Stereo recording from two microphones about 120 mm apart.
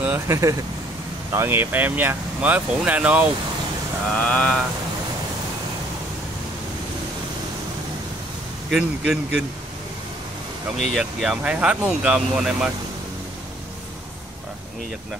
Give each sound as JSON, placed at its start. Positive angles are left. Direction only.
{"t": 0.0, "sound": "speech", "side_deg": -20}
{"t": 4.1, "sound": "mantra", "side_deg": 10}
{"t": 8.6, "sound": "speech", "side_deg": -5}
{"t": 10.8, "sound": "speech", "side_deg": -5}